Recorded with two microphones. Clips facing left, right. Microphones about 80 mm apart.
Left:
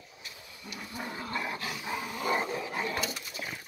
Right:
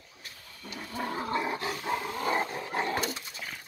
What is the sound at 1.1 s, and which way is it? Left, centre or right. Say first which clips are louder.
Dog: right 5 dB; right.